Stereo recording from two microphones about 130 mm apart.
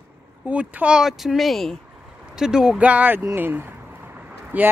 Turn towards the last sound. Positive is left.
turn(degrees=-10)  # may be behind; listen again after turning